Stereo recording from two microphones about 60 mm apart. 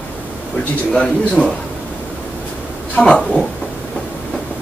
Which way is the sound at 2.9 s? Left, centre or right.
Centre.